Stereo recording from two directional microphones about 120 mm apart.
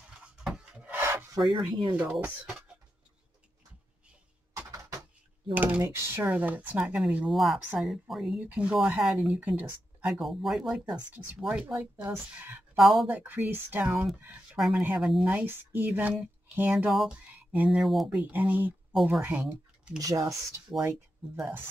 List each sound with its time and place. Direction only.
0.1 s rub: 5° right (ahead or behind); by 1.4 s 20° right (ahead or behind)
1.5 s speech: 40° right (ahead or behind)
2.0 s speech: 10° right (ahead or behind)
5.5 s speech: 15° right (ahead or behind)
7.2 s speech: centre (ahead or behind)
10.1 s speech: centre (ahead or behind)
12.7 s speech: centre (ahead or behind)
13.0 s speech: 15° right (ahead or behind)
20.0 s speech: 30° right (ahead or behind)